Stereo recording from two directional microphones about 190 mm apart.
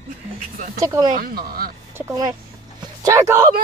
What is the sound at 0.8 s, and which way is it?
Speech, 20° right (ahead or behind).